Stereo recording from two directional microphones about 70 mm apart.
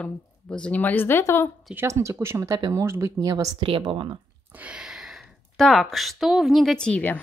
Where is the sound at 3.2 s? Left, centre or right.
Right.